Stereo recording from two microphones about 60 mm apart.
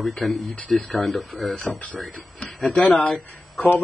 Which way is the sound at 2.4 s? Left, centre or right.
Centre.